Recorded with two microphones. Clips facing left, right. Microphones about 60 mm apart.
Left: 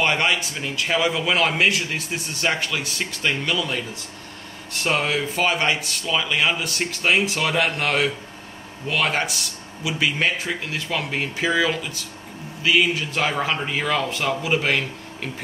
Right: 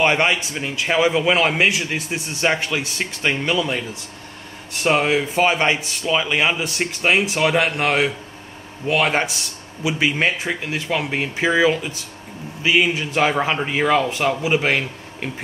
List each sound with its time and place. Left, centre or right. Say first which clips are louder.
0.0 s a man's voice: right 3 dB; right
4.8 s a man's voice: right 5 dB; right